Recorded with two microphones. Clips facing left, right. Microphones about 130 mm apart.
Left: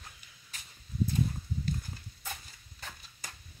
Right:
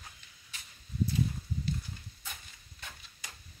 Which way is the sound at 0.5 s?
40° left (ahead or behind).